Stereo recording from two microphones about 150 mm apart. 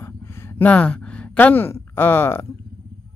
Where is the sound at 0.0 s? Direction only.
15° left (ahead or behind).